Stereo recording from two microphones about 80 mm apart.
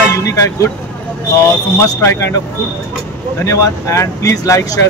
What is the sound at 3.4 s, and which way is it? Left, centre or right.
Speech, left.